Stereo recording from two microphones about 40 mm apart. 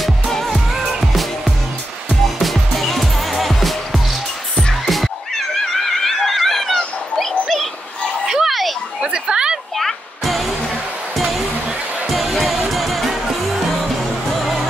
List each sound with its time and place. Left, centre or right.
0.5 s music: centre
2.2 s music: centre
4.8 s cat: centre
5.9 s a sound: centre
8.3 s a sound: centre
9.8 s music: centre
10.6 s basketball bounce: centre
12.1 s music: centre